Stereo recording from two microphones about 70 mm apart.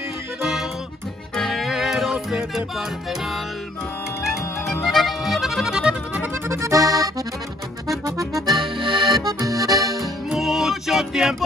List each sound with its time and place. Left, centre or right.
0.4 s music: centre
4.8 s music: centre
6.5 s accordion: right
9.0 s accordion: right
10.3 s music: centre